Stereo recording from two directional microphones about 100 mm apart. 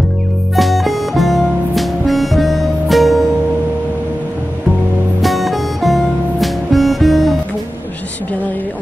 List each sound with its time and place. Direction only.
0.6 s music: centre (ahead or behind)
5.2 s music: centre (ahead or behind)